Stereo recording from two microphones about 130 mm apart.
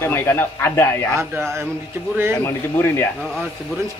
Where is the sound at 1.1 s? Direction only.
20° right (ahead or behind).